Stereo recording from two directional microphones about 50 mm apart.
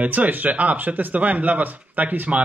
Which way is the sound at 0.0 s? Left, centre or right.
Right.